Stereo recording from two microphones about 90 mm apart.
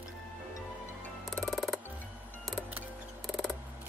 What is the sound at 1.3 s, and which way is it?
Music, centre (ahead or behind).